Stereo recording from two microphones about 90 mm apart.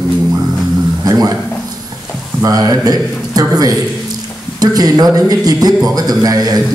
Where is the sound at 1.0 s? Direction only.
45° right (ahead or behind).